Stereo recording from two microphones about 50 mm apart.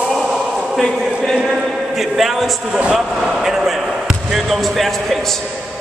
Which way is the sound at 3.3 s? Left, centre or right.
Centre.